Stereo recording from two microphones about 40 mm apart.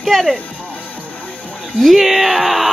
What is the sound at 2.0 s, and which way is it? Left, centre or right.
Speech, centre.